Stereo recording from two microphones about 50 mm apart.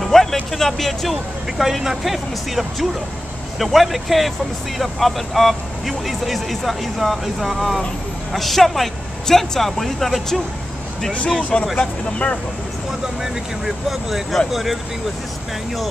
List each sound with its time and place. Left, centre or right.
0.0 s speech: centre
11.7 s speech: left
13.8 s speech: centre